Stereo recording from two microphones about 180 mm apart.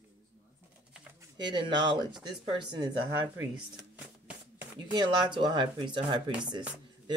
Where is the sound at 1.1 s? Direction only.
25° right (ahead or behind).